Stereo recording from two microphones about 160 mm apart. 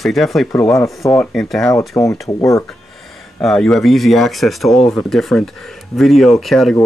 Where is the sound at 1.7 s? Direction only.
20° left (ahead or behind).